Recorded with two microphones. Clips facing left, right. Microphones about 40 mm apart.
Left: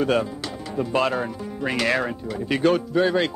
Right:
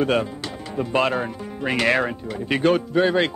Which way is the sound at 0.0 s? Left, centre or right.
Right.